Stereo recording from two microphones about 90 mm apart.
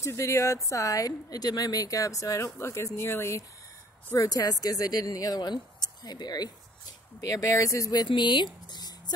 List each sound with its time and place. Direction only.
0.0 s a woman's voice: 35° left (ahead or behind)
8.1 s speech: 60° left (ahead or behind)
8.7 s a sound: 50° left (ahead or behind)